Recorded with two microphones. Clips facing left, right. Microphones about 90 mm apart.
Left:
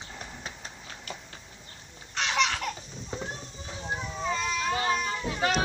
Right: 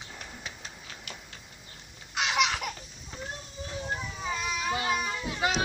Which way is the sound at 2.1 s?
5° right (ahead or behind).